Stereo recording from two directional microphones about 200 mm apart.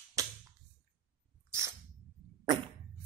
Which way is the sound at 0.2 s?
15° right (ahead or behind).